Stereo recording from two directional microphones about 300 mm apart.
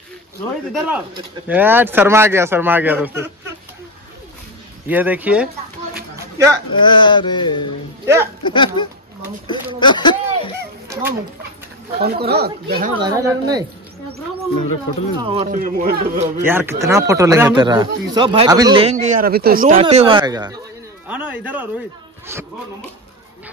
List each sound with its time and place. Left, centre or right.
0.7 s speech: centre
4.8 s speech: centre
6.1 s a sound: centre
6.8 s a sound: centre
8.0 s speech: centre
8.5 s a sound: centre
9.8 s speech: centre
10.9 s speech: centre
12.0 s speech: right
13.0 s speech: centre
15.2 s speech: centre
16.4 s speech: centre